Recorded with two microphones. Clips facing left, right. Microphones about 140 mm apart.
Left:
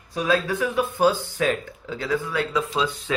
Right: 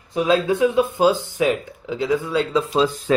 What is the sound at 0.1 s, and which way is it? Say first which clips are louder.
Speech: right 5 dB; 20° right (ahead or behind).